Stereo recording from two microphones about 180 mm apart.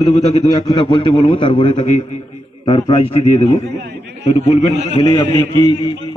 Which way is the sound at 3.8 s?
75° right (ahead or behind).